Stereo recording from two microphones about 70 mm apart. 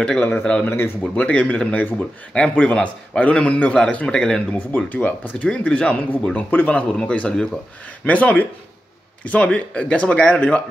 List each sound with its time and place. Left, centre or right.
0.4 s a man's voice: centre
0.7 s speech: left
1.1 s a man's voice: centre
4.6 s a man's voice: left